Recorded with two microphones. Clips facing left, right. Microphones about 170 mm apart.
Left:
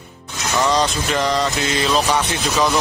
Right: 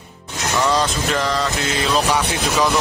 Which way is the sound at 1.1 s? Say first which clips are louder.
Left 3 dB; centre (ahead or behind).